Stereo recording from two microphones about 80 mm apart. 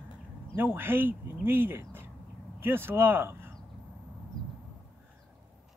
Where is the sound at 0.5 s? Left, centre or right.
Right.